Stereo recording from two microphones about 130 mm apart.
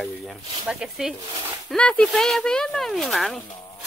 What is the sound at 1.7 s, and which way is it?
Speech, 5° left (ahead or behind).